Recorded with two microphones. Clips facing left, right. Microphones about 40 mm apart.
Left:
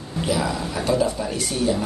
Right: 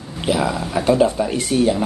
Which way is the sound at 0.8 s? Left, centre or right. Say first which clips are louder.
Right 6 dB; right.